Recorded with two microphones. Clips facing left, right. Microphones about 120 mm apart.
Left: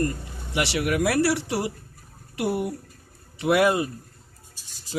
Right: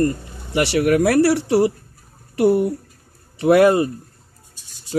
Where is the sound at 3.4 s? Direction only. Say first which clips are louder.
Right 7 dB; 40° right (ahead or behind).